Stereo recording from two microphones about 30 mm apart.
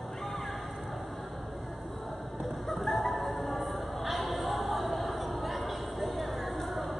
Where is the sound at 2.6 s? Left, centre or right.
Centre.